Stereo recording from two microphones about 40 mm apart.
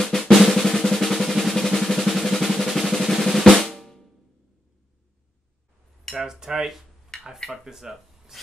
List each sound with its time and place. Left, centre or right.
0.0 s drum: centre
6.1 s cutlery: centre
7.4 s speech: centre